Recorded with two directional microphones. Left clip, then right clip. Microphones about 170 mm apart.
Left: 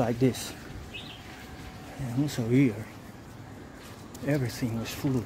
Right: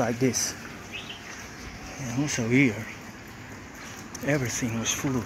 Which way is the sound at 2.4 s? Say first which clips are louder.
Right 3 dB; 20° left (ahead or behind).